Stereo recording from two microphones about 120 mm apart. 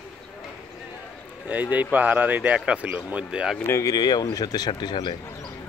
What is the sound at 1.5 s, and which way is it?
Speech, 15° right (ahead or behind).